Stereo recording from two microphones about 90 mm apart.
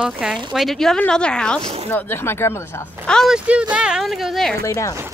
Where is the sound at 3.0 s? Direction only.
10° left (ahead or behind).